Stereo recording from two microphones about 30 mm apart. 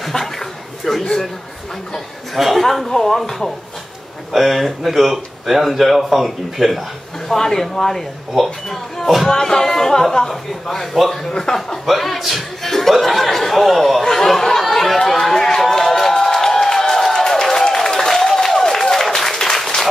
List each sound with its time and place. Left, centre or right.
0.1 s a sound: centre
2.3 s a man's voice: centre
4.3 s speech: centre
7.2 s a man's voice: centre
9.0 s speech: centre
9.3 s a man's voice: centre
11.2 s a man's voice: left
11.8 s speech: centre
12.6 s chuckle: centre
13.0 s speech: centre
14.0 s speech: centre
14.7 s chatter: centre
15.0 s a sound: centre
18.1 s applause: centre